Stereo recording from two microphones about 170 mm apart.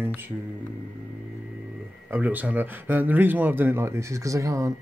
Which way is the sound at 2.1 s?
10° right (ahead or behind).